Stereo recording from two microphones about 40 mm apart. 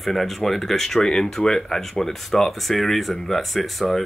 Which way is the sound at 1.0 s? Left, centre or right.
Left.